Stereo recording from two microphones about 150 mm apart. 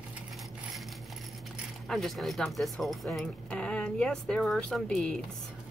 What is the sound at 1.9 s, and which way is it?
Speech, centre (ahead or behind).